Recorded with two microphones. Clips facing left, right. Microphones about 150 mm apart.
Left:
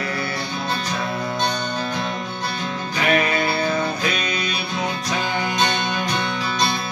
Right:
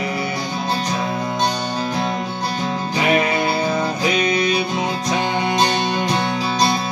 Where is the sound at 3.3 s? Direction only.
20° right (ahead or behind).